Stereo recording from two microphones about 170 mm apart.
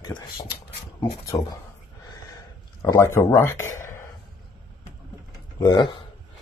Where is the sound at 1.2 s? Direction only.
20° left (ahead or behind).